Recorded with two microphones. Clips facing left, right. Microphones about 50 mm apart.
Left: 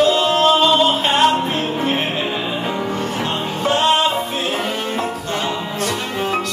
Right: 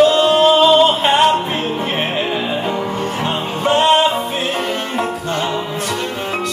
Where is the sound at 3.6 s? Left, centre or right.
Centre.